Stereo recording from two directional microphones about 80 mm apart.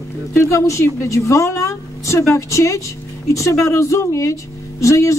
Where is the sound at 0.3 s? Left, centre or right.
Left.